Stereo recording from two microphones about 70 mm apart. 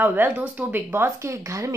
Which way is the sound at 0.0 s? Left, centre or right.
Right.